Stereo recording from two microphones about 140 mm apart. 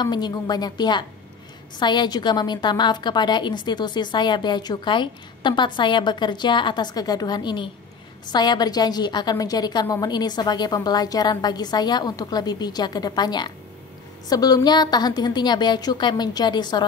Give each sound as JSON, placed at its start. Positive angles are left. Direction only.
{"t": 0.0, "sound": "a woman's voice", "side_deg": 30}